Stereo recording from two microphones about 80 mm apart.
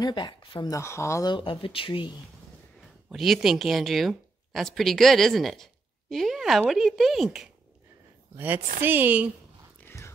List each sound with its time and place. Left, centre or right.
0.0 s speech: left
0.7 s speech: left
1.2 s speech: left
3.1 s speech: centre
8.4 s a woman's voice: right